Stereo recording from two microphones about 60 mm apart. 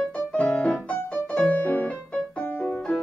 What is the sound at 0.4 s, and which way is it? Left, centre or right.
Music, centre.